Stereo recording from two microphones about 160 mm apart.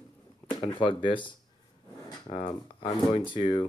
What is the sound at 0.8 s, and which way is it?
Speech, 30° left (ahead or behind).